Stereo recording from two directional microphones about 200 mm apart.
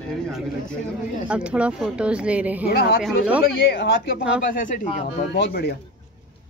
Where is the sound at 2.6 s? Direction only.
50° left (ahead or behind).